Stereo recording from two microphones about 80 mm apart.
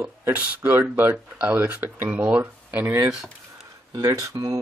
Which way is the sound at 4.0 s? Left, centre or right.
Right.